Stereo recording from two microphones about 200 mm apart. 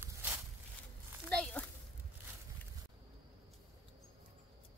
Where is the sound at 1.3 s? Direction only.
5° left (ahead or behind).